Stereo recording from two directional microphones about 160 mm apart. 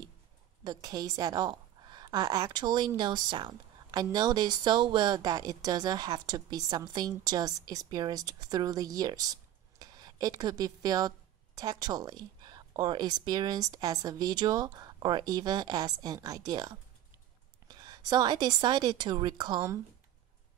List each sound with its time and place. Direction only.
0.7 s a woman's voice: 25° right (ahead or behind)